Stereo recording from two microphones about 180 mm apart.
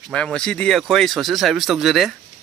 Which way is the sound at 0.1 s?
5° left (ahead or behind).